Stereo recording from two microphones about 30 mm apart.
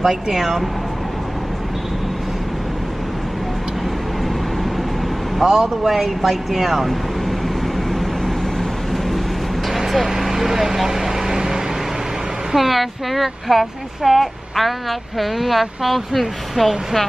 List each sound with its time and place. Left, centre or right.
0.0 s speech: centre
5.4 s speech: centre
9.7 s vehicle: centre
12.5 s speech: centre